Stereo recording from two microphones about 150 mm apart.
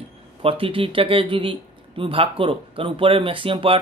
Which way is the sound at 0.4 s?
40° right (ahead or behind).